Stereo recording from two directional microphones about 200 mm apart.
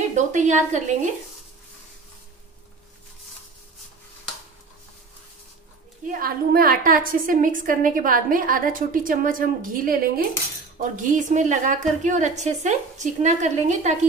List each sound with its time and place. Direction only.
0.1 s a woman's voice: 35° right (ahead or behind)
6.0 s a woman's voice: 45° right (ahead or behind)